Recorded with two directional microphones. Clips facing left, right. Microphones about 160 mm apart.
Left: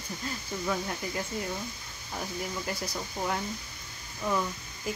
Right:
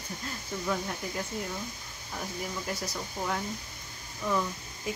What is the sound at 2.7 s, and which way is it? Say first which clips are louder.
Speech: left 1 dB; centre (ahead or behind).